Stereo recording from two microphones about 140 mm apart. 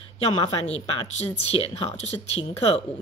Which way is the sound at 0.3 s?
45° left (ahead or behind).